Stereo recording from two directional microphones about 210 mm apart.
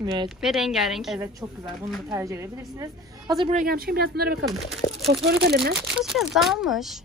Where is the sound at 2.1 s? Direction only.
15° right (ahead or behind).